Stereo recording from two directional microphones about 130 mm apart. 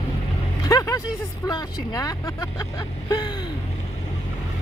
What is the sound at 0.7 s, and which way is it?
Music, 30° left (ahead or behind).